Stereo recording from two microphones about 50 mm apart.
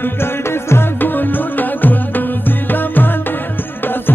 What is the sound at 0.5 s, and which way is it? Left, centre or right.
Music, left.